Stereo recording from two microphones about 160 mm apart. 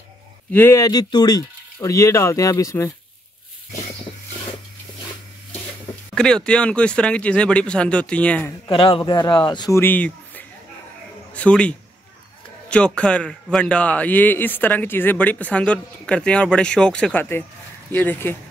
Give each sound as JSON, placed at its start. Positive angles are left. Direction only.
{"t": 0.5, "sound": "speech", "side_deg": 15}
{"t": 6.1, "sound": "a man's voice", "side_deg": 5}
{"t": 8.6, "sound": "speech", "side_deg": 35}
{"t": 9.8, "sound": "a man's voice", "side_deg": 10}